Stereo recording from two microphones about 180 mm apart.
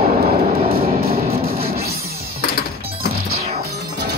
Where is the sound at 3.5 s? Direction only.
60° right (ahead or behind).